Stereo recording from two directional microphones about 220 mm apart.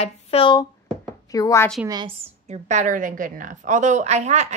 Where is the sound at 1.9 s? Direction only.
20° right (ahead or behind).